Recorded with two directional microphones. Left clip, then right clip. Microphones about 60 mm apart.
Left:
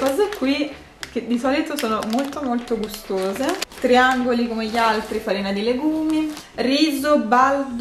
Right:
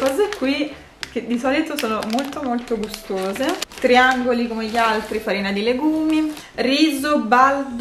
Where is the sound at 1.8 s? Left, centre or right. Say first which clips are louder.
Even; centre.